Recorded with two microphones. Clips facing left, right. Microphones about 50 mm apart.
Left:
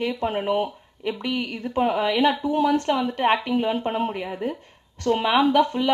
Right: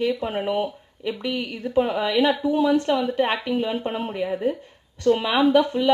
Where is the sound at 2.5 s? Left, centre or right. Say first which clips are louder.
Right 1 dB; left.